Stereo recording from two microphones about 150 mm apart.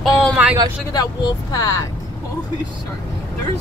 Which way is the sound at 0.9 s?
25° left (ahead or behind).